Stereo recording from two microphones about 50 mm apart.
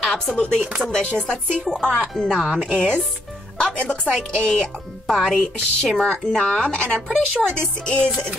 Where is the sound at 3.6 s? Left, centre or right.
Centre.